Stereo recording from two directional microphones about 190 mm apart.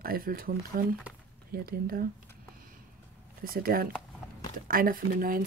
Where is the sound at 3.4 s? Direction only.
50° right (ahead or behind).